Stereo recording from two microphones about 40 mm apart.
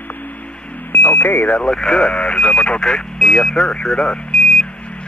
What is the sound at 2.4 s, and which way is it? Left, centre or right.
Speech, left.